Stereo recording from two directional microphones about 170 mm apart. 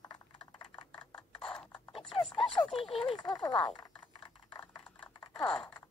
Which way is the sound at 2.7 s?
30° left (ahead or behind).